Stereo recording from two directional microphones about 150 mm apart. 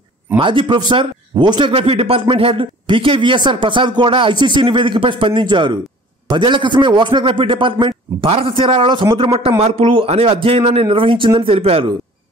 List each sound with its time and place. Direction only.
0.4 s speech: 35° right (ahead or behind)